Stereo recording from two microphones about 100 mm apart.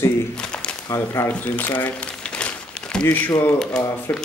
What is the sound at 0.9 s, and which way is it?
Speech, 25° left (ahead or behind).